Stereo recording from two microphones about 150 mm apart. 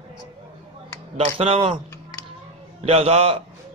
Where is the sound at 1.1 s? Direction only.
40° right (ahead or behind).